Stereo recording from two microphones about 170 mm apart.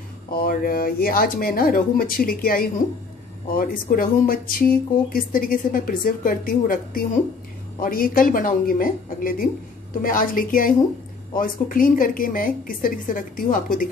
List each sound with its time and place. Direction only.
0.3 s speech: 60° left (ahead or behind)